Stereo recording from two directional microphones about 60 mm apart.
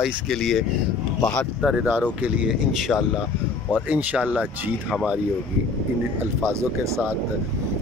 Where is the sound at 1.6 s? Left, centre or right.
Right.